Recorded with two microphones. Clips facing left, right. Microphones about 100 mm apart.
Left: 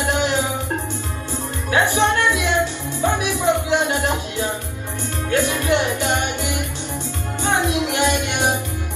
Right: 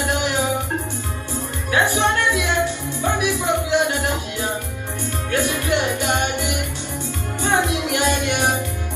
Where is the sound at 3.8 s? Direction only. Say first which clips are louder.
Left 1 dB; 20° left (ahead or behind).